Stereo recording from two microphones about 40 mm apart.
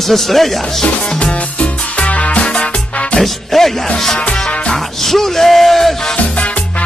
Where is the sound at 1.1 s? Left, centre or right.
Left.